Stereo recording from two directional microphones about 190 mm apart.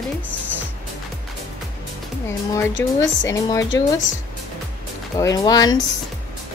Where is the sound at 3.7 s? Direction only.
85° left.